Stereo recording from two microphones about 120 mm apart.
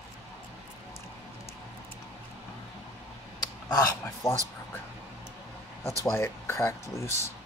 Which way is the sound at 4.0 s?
20° left (ahead or behind).